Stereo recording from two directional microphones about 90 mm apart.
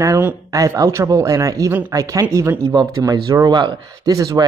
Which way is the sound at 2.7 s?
50° right (ahead or behind).